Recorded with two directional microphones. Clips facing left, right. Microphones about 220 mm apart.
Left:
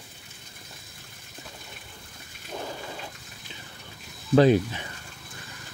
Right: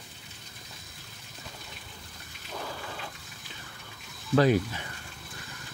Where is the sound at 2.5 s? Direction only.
20° left (ahead or behind).